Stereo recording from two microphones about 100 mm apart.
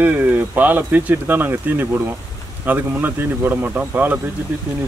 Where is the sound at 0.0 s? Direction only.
15° right (ahead or behind).